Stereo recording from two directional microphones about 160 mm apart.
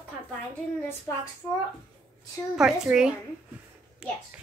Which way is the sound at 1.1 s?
20° left (ahead or behind).